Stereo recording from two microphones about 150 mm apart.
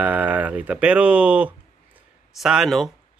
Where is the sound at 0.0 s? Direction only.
10° right (ahead or behind).